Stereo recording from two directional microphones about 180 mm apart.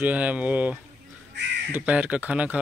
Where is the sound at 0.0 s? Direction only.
10° right (ahead or behind).